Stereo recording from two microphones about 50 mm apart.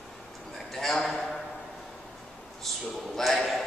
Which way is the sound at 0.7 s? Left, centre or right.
Centre.